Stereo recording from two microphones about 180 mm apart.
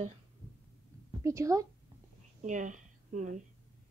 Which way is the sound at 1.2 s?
15° right (ahead or behind).